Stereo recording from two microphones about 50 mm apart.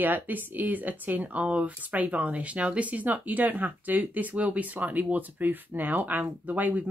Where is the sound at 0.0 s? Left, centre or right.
Right.